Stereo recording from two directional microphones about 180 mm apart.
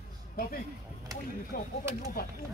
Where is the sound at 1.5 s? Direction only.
50° left (ahead or behind).